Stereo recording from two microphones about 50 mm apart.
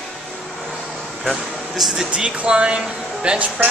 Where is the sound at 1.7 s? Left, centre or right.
Centre.